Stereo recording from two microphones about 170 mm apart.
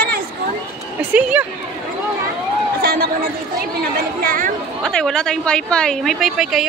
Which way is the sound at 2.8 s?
65° right (ahead or behind).